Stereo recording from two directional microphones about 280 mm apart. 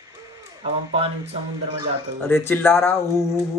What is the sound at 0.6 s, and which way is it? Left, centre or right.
Speech, right.